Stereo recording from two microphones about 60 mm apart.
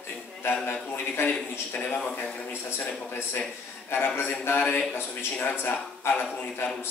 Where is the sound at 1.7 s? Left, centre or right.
Left.